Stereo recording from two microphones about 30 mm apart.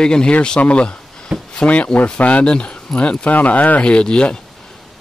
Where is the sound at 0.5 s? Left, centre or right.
Left.